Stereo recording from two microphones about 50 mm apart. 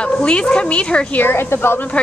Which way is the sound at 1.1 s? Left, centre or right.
Left.